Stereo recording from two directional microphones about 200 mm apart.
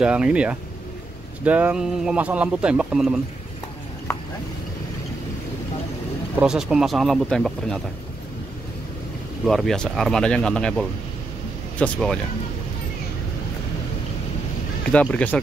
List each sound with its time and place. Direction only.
0.0 s speech: 5° right (ahead or behind)
6.4 s speech: 5° right (ahead or behind)
9.5 s speech: centre (ahead or behind)
14.9 s speech: 5° left (ahead or behind)